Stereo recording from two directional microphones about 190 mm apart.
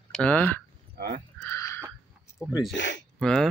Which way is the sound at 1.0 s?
55° right (ahead or behind).